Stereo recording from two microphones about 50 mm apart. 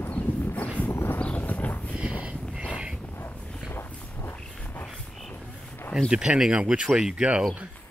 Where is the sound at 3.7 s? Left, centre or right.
Left.